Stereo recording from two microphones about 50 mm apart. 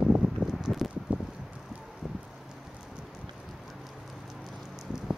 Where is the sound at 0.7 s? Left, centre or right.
Centre.